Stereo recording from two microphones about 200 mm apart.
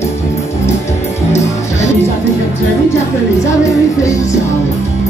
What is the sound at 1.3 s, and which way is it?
Music, 15° left (ahead or behind).